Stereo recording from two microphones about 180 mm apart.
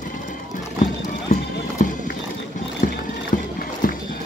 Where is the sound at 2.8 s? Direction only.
45° left (ahead or behind).